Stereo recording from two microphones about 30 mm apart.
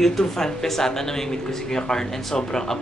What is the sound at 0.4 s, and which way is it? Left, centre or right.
Speech, centre.